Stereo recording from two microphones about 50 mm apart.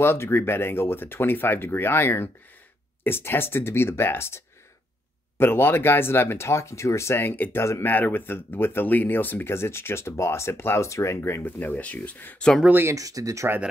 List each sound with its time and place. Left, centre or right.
0.0 s speech: left
5.4 s speech: left
7.2 s speech: left
7.5 s speech: left
7.8 s speech: left
9.5 s speech: left
11.2 s speech: left
11.6 s speech: left
12.8 s speech: right